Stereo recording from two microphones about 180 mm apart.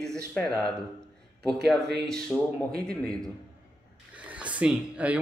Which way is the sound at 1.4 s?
Centre (ahead or behind).